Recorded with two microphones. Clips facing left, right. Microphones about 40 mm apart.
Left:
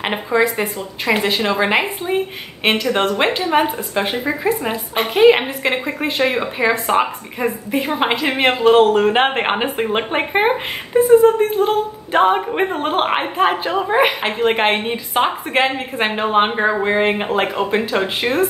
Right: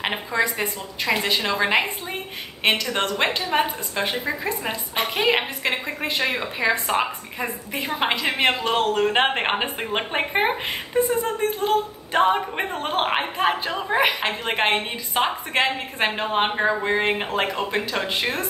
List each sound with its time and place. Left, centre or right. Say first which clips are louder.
0.0 s a woman's voice: left 6 dB; centre